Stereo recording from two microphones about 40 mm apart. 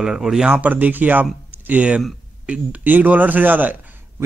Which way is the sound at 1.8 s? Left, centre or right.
Right.